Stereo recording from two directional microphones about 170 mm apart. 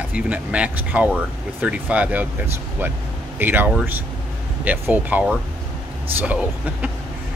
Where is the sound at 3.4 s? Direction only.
10° right (ahead or behind).